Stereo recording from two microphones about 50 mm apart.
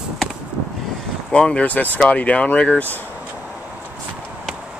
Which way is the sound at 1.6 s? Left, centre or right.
Left.